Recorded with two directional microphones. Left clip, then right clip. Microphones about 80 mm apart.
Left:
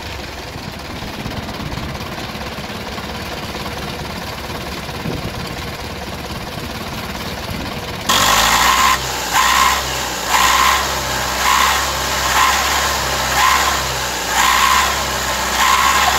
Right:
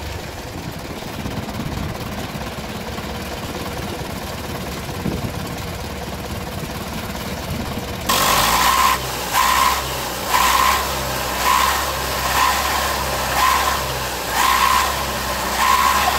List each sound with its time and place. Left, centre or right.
8.1 s vehicle: right